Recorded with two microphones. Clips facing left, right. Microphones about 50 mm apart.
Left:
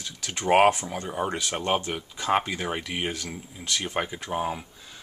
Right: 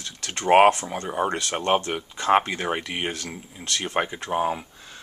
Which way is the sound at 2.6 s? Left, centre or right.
Centre.